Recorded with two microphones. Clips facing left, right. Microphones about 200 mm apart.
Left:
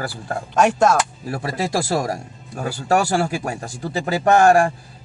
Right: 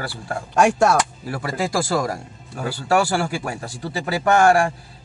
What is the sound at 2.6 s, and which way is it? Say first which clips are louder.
Speech: even; 40° left (ahead or behind).